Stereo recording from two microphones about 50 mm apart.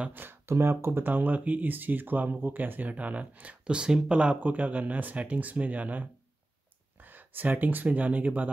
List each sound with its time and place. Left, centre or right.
0.1 s speech: right
0.5 s speech: right
1.0 s speech: right; by 4.4 s centre
4.4 s speech: right